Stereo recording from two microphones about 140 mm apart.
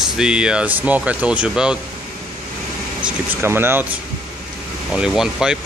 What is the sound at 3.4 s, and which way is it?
Speech, 15° right (ahead or behind).